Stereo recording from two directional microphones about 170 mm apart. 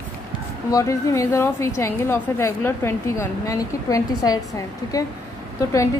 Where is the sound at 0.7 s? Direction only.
20° left (ahead or behind).